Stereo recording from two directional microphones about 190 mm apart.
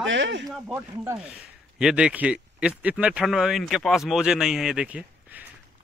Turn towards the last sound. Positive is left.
turn(degrees=-10)  # may be behind; listen again after turning